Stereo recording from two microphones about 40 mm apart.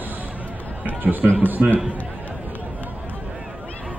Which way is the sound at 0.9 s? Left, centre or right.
Right.